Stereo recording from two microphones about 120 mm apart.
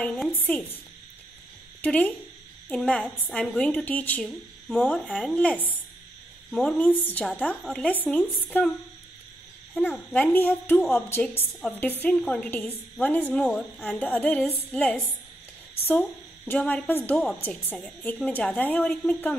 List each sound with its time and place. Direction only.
0.0 s a woman's voice: 5° left (ahead or behind)
0.4 s a woman's voice: 15° left (ahead or behind)
1.8 s a woman's voice: 15° left (ahead or behind)
4.2 s speech: 5° left (ahead or behind)
5.4 s a woman's voice: 15° left (ahead or behind)
9.8 s a woman's voice: 15° left (ahead or behind)